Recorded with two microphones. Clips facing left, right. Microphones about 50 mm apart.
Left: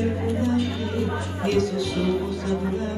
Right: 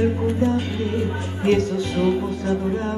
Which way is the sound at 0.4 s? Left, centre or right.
Right.